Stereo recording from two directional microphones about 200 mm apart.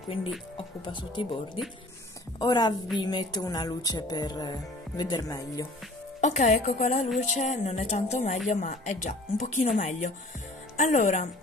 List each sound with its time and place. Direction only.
0.8 s speech: 25° left (ahead or behind)
6.2 s speech: 35° left (ahead or behind)